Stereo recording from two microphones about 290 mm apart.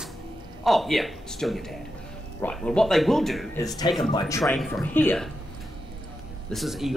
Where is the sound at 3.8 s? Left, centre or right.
Centre.